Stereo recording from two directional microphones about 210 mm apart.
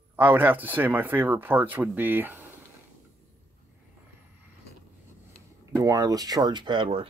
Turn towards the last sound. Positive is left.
turn(degrees=-25)  # may be behind; listen again after turning